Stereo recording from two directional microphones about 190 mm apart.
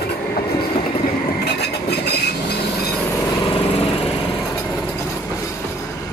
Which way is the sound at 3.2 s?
25° left (ahead or behind).